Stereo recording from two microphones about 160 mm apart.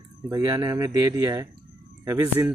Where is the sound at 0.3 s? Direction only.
20° right (ahead or behind).